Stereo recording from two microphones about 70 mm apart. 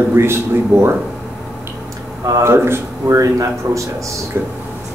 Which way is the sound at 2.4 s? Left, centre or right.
Right.